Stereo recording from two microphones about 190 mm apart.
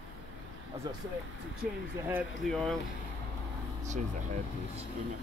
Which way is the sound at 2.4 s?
Centre (ahead or behind).